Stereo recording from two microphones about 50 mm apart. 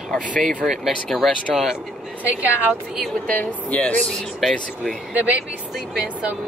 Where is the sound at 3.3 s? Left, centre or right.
Left.